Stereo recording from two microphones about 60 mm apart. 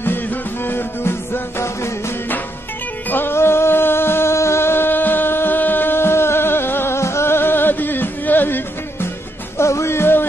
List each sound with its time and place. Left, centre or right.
0.0 s music: left
3.1 s music: left
9.6 s music: left